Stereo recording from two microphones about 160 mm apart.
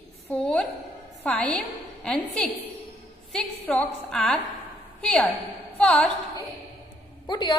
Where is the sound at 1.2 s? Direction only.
5° left (ahead or behind).